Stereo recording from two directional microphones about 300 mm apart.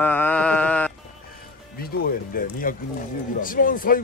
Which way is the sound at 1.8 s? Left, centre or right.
Left.